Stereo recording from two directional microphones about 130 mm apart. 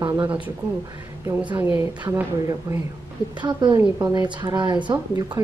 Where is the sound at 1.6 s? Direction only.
15° right (ahead or behind).